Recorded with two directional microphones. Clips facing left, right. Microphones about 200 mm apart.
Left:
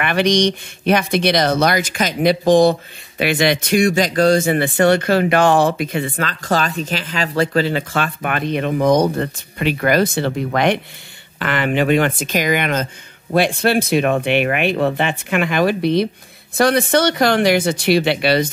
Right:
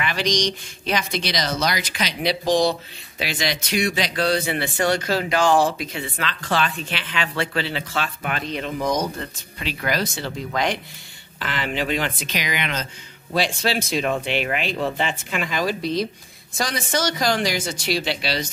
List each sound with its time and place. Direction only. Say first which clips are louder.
0.0 s speech: left 7 dB; 60° left (ahead or behind)